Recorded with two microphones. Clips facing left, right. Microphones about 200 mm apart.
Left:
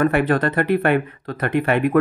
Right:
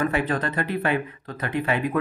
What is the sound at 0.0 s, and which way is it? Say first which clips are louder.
Speech: left 6 dB; 65° left (ahead or behind).